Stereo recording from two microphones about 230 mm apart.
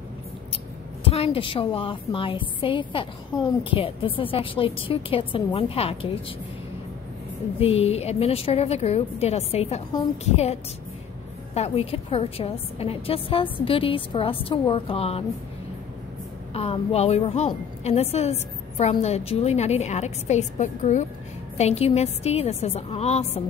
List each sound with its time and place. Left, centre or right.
1.0 s a woman's voice: left
7.6 s a woman's voice: left
16.5 s a woman's voice: left